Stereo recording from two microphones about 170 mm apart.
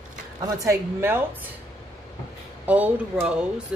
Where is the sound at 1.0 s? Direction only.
15° right (ahead or behind).